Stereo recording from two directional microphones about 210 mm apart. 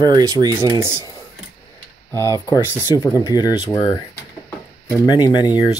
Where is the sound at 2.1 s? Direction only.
15° left (ahead or behind).